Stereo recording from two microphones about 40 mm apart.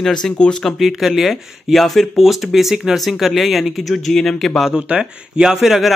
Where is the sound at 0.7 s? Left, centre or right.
Centre.